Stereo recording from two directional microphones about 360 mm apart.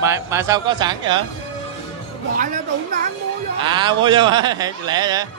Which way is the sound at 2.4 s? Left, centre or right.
Right.